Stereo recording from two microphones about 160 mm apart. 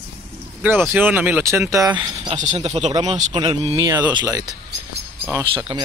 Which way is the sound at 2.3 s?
50° right (ahead or behind).